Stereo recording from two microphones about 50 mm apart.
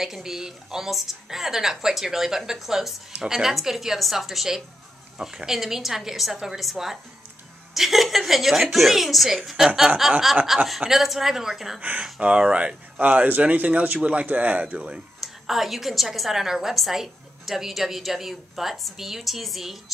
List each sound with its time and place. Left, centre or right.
0.0 s a woman's voice: centre
12.0 s speech: right
15.4 s a woman's voice: centre